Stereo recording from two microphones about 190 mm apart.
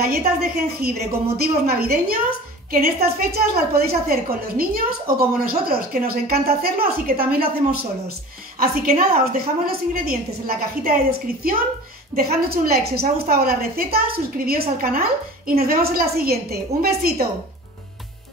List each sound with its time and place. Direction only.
0.0 s a woman's voice: 55° right (ahead or behind)